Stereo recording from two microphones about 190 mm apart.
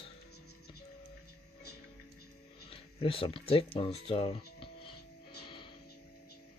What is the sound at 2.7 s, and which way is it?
Speech, 30° left (ahead or behind).